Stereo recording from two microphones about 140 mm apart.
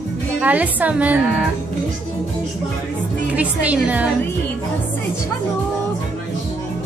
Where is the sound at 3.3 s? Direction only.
10° right (ahead or behind).